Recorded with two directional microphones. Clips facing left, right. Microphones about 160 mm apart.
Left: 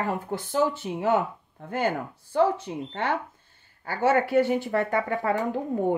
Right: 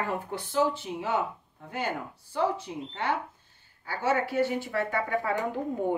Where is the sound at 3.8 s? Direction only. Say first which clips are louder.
Left 5 dB; 55° left (ahead or behind).